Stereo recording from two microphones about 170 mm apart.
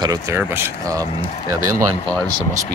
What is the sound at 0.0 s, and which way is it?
Speech, 20° right (ahead or behind).